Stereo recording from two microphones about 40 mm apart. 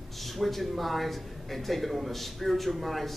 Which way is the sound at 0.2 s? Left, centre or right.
Centre.